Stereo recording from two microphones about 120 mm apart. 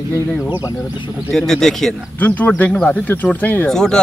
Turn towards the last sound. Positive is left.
turn(degrees=5)  # may be behind; listen again after turning